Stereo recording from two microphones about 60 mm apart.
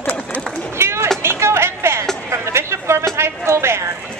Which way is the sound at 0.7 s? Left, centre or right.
Right.